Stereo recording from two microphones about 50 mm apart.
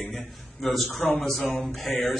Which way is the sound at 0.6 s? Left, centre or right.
Centre.